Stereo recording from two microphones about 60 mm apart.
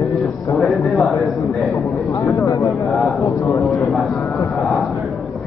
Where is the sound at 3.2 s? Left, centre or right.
Left.